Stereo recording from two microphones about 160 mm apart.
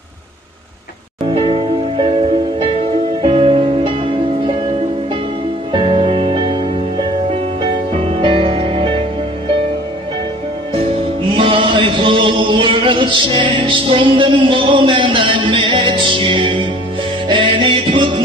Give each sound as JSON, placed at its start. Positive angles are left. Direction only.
{"t": 1.2, "sound": "music", "side_deg": -35}
{"t": 5.7, "sound": "music", "side_deg": -30}
{"t": 11.3, "sound": "chant", "side_deg": -35}
{"t": 17.3, "sound": "music", "side_deg": -30}